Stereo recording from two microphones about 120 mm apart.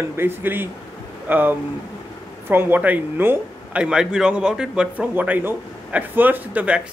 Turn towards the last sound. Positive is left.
turn(degrees=-10)  # may be behind; listen again after turning